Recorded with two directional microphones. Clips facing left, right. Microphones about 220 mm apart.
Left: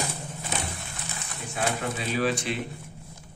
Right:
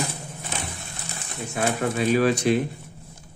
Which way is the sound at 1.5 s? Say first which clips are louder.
Right 5 dB; 50° right (ahead or behind).